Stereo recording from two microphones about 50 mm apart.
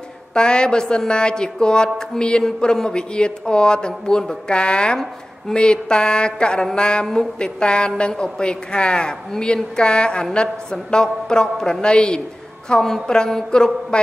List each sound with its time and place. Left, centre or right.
0.3 s a woman's voice: centre